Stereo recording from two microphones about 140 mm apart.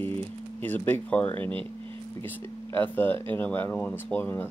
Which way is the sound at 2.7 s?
15° left (ahead or behind).